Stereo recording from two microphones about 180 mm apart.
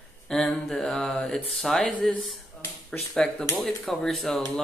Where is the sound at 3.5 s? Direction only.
Centre (ahead or behind).